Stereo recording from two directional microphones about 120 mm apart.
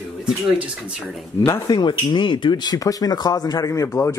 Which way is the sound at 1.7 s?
40° left (ahead or behind).